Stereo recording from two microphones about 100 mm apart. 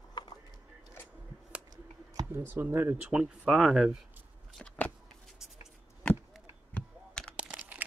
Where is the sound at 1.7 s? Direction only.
40° right (ahead or behind).